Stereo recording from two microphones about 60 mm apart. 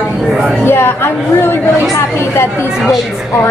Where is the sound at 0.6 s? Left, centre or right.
Left.